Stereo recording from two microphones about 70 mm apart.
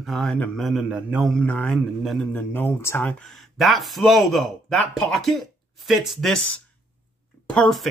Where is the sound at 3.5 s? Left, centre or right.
Centre.